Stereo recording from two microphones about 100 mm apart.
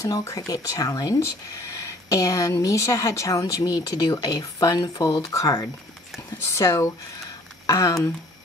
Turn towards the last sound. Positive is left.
turn(degrees=30)  # may be behind; listen again after turning